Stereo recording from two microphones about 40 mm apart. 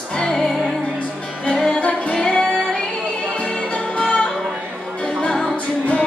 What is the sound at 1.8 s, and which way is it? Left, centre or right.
Music, left.